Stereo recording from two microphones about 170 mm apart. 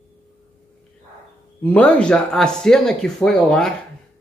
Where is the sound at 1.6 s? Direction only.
5° left (ahead or behind).